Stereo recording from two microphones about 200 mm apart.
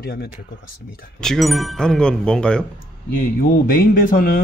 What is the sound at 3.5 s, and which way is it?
Speech, 45° left (ahead or behind).